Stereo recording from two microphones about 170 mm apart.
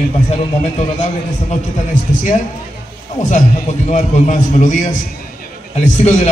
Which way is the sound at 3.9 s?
45° left (ahead or behind).